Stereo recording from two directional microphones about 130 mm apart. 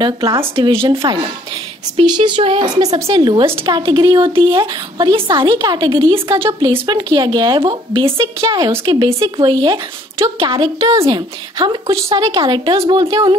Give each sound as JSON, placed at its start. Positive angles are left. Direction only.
{"t": 0.0, "sound": "speech", "side_deg": -40}